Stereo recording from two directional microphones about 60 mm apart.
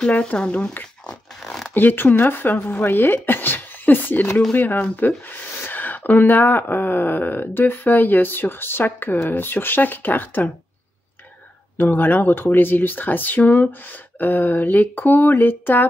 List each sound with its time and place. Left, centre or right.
0.0 s speech: centre
1.4 s zipper: centre
1.7 s speech: left
11.7 s speech: left